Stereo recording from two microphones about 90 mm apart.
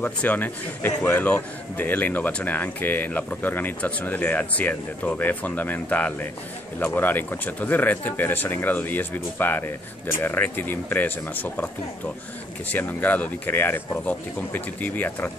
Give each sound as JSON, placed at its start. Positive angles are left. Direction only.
{"t": 0.0, "sound": "speech", "side_deg": 20}